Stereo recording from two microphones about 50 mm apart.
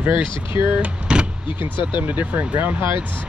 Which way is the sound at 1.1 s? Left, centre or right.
Centre.